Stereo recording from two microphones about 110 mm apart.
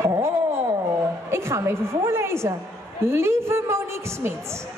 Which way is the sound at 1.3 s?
25° right (ahead or behind).